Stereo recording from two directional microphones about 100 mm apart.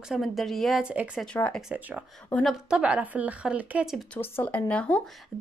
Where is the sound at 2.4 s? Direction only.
5° right (ahead or behind).